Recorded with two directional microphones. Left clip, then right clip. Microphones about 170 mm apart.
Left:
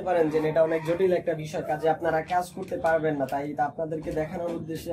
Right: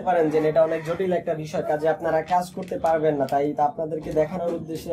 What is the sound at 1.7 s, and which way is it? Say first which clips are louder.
Speech: right 2 dB; 40° right (ahead or behind).